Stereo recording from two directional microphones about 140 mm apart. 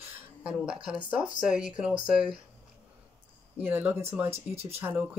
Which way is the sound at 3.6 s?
15° right (ahead or behind).